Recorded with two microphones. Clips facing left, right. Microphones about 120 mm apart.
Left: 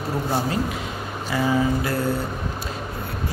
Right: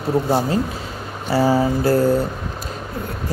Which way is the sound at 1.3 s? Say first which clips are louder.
Right 5 dB; 35° right (ahead or behind).